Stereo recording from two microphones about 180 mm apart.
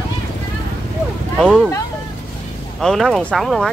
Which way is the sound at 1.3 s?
Centre (ahead or behind).